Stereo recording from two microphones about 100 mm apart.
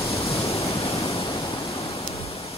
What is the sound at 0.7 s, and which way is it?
Waves, 90° left.